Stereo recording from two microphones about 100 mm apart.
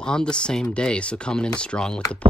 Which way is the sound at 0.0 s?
10° left (ahead or behind).